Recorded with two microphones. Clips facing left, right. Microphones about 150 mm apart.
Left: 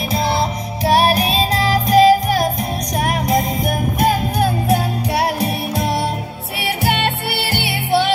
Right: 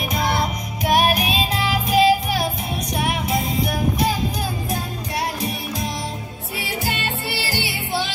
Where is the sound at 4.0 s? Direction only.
60° left (ahead or behind).